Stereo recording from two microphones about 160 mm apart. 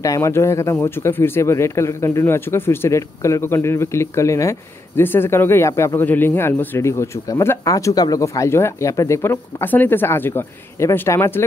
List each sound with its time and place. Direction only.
0.0 s speech: 20° left (ahead or behind)